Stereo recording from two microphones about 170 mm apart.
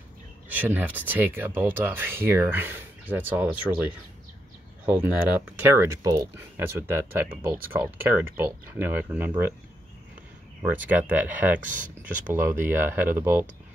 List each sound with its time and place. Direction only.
0.5 s speech: 10° right (ahead or behind)
10.6 s speech: 10° right (ahead or behind)
11.6 s speech: 50° right (ahead or behind)
12.4 s speech: 15° right (ahead or behind)